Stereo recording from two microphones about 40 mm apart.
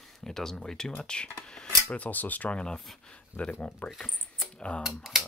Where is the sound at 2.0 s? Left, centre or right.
Left.